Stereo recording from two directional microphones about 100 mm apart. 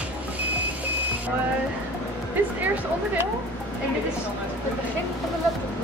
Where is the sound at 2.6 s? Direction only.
15° right (ahead or behind).